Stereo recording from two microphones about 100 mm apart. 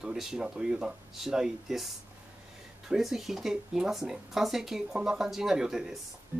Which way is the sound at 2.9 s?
5° right (ahead or behind).